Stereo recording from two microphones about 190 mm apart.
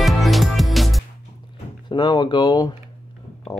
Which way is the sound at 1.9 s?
25° left (ahead or behind).